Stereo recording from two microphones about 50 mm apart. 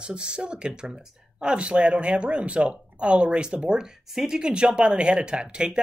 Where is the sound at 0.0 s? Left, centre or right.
Centre.